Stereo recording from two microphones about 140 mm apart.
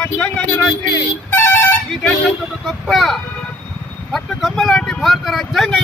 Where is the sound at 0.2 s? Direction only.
15° left (ahead or behind).